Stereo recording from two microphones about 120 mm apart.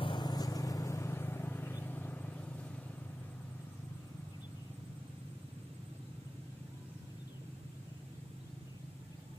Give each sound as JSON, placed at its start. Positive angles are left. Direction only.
{"t": 0.0, "sound": "vehicle", "side_deg": 40}